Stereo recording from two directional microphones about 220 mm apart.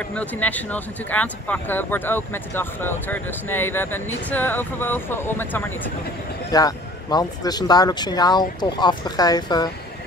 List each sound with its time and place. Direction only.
0.1 s speech: 5° left (ahead or behind)